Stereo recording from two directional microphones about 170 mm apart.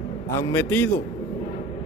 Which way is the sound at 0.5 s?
15° left (ahead or behind).